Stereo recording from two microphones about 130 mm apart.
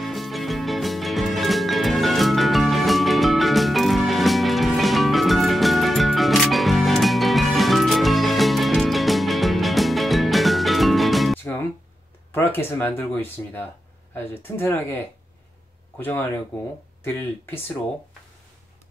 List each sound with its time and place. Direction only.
0.0 s music: centre (ahead or behind)
11.3 s music: 20° left (ahead or behind)
12.3 s speech: 15° left (ahead or behind)
16.0 s speech: 15° left (ahead or behind)